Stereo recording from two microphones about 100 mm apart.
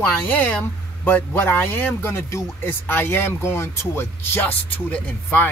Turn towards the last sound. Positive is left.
turn(degrees=15)  # may be behind; listen again after turning